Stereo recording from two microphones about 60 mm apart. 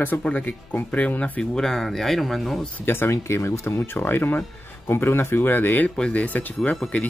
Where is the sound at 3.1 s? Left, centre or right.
Left.